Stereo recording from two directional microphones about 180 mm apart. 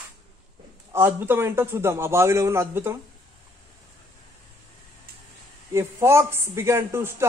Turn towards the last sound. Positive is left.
turn(degrees=-15)  # may be behind; listen again after turning